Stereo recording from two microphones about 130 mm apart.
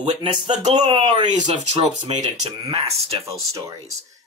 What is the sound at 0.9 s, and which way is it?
Speech, 35° right (ahead or behind).